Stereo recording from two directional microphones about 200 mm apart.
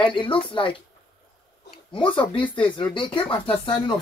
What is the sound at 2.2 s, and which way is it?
Speech, 25° left (ahead or behind).